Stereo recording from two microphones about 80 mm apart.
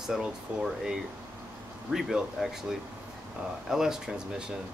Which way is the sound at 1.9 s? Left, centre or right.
Centre.